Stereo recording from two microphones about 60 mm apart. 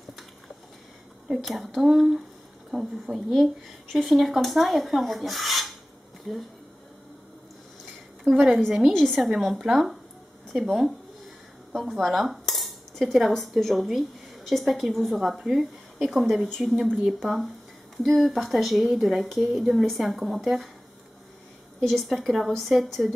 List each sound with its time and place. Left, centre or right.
1.3 s a woman's voice: centre
8.2 s a woman's voice: centre
9.4 s a woman's voice: centre
11.7 s cutlery: centre
13.3 s a woman's voice: centre
21.8 s a woman's voice: centre